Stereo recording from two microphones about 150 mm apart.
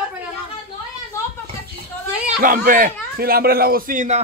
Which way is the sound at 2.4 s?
65° right (ahead or behind).